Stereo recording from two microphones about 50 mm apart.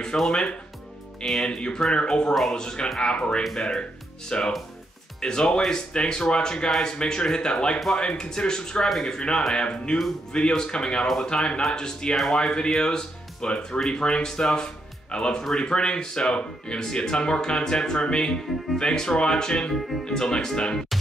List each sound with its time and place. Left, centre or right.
0.3 s speech: centre
1.2 s speech: centre
1.5 s speech: centre